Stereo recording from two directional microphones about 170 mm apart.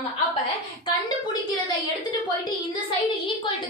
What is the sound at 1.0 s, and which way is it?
Speech, 25° left (ahead or behind).